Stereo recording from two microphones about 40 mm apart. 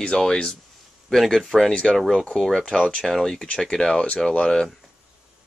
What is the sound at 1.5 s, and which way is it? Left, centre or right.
Speech, centre.